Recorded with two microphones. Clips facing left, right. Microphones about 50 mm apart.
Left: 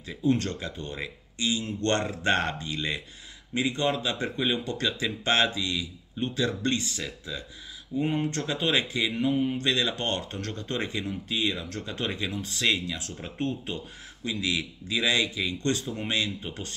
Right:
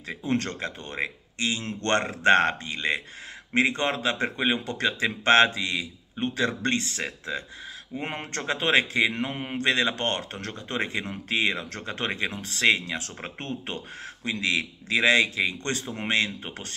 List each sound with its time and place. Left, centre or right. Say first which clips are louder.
0.0 s speech: left 2 dB; right
3.5 s speech: right 3 dB; right